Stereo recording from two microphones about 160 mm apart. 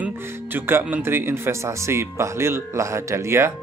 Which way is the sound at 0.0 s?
15° right (ahead or behind).